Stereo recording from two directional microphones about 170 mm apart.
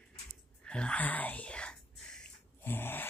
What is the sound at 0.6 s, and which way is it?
Whispering, 5° left (ahead or behind).